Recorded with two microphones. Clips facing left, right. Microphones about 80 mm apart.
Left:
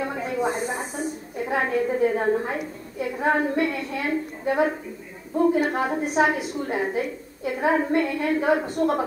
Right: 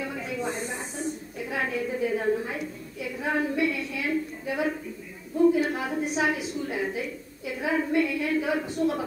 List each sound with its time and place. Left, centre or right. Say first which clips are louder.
0.0 s snake: left 6 dB; left
0.7 s a woman's voice: left 4 dB; left
5.3 s a woman's voice: left 1 dB; left